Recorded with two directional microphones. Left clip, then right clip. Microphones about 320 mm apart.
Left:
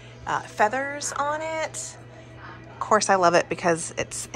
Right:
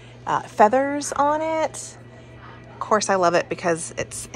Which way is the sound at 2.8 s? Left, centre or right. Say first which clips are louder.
Even; centre.